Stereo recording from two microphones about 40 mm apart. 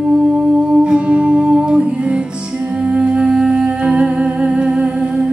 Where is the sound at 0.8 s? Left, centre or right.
Right.